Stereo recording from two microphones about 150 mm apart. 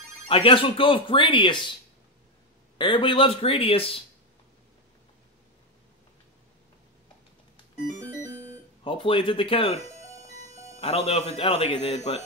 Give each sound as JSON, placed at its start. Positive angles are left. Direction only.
{"t": 0.3, "sound": "speech", "side_deg": 40}
{"t": 2.8, "sound": "speech", "side_deg": 35}
{"t": 8.8, "sound": "speech", "side_deg": 35}
{"t": 10.8, "sound": "speech", "side_deg": 40}